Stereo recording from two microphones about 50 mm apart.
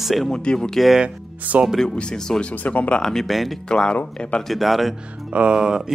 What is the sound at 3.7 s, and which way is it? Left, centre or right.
Speech, centre.